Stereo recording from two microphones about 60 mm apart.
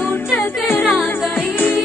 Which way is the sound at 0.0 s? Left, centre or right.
Left.